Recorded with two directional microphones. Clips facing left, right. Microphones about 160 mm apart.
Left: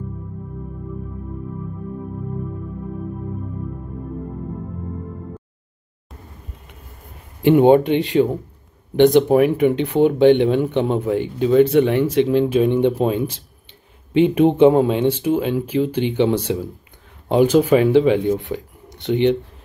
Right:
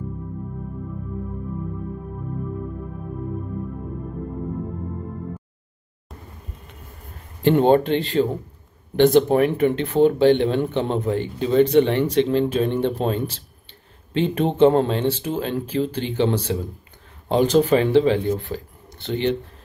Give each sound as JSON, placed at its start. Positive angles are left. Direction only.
{"t": 7.4, "sound": "speech", "side_deg": 10}